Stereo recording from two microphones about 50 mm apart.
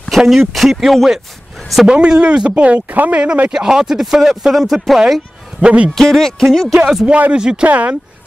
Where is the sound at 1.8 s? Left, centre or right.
Centre.